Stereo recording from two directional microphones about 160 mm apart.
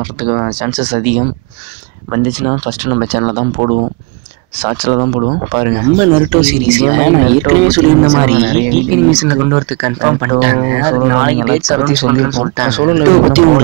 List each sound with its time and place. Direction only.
0.0 s speech: 45° right (ahead or behind)
5.8 s speech: 30° right (ahead or behind)
12.7 s speech: 40° right (ahead or behind)